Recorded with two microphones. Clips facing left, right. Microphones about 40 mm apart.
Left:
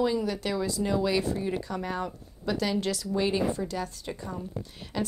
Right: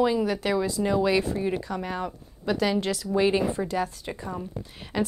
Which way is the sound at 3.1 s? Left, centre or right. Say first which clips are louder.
Right 5 dB; right.